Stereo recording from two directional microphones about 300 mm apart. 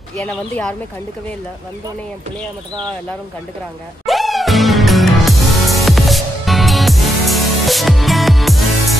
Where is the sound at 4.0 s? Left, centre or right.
Centre.